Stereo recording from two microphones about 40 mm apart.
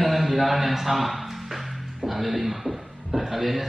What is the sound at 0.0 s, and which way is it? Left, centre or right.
A man's voice, centre.